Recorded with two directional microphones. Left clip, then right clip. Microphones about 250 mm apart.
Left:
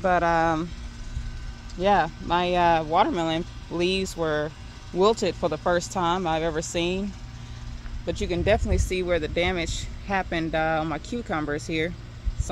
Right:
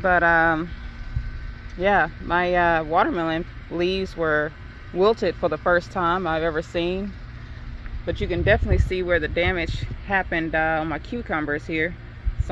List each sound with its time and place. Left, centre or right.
0.0 s speech: centre
1.8 s speech: left